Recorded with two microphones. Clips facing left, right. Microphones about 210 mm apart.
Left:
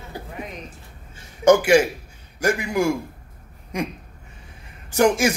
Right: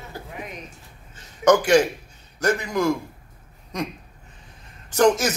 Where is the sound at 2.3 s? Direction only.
10° left (ahead or behind).